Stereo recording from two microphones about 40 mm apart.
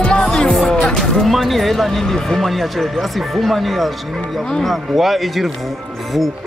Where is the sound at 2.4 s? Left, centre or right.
Centre.